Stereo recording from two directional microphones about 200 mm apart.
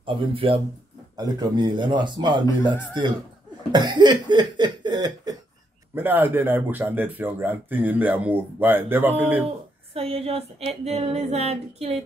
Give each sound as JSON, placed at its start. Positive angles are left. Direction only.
{"t": 0.0, "sound": "cough", "side_deg": -25}
{"t": 3.7, "sound": "cough", "side_deg": -20}
{"t": 5.9, "sound": "speech", "side_deg": -10}
{"t": 9.9, "sound": "a sound", "side_deg": -30}